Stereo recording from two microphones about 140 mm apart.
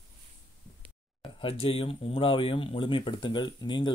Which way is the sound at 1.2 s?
40° left (ahead or behind).